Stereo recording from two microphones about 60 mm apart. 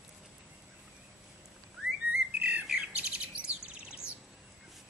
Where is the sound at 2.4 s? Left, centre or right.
Centre.